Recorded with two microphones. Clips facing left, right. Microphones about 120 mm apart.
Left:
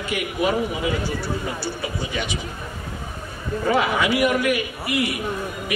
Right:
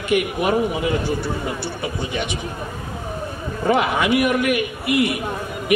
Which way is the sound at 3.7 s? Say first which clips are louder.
Right 3 dB; 20° right (ahead or behind).